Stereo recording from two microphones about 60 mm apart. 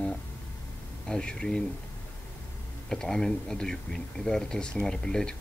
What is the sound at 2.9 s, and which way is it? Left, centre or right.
Speech, centre.